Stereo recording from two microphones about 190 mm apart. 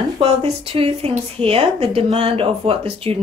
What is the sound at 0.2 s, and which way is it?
Speech, 30° right (ahead or behind).